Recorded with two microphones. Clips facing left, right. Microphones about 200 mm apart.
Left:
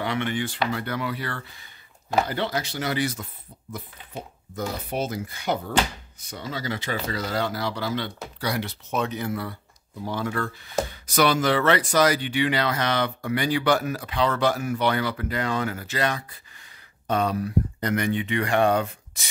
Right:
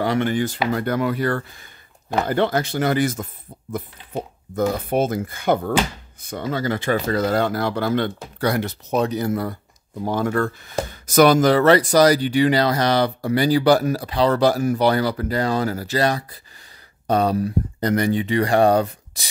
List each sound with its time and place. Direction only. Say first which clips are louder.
0.0 s speech: right 6 dB; 40° right (ahead or behind)